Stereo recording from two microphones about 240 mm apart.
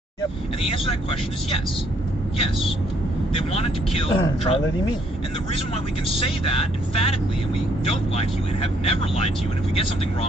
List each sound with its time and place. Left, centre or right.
0.6 s speech: left
3.5 s speech: left
6.1 s speech: left
8.2 s speech: left